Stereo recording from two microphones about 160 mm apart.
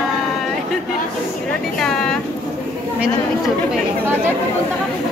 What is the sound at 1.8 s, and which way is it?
A woman's voice, 5° left (ahead or behind).